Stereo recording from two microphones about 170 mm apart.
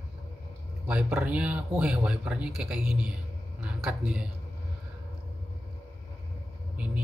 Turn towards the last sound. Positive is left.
turn(degrees=-10)  # may be behind; listen again after turning